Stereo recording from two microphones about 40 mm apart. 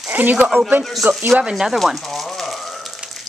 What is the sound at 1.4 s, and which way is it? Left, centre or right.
Speech, centre.